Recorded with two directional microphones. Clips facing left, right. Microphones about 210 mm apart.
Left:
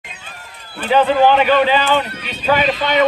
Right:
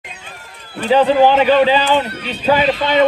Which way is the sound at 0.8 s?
30° right (ahead or behind).